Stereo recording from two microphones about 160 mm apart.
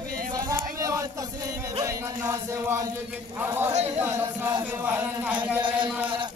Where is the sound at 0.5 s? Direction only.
20° right (ahead or behind).